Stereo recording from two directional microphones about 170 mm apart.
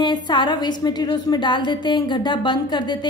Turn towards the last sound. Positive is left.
turn(degrees=25)  # may be behind; listen again after turning